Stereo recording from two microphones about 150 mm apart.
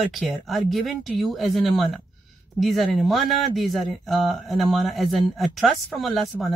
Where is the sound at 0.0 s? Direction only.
Centre (ahead or behind).